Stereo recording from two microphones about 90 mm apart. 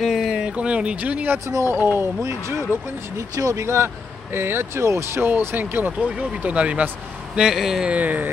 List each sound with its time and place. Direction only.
0.0 s speech: centre (ahead or behind)
7.9 s speech: 15° right (ahead or behind)